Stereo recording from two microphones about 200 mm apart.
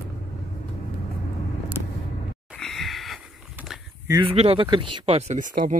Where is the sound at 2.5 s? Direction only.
Centre (ahead or behind).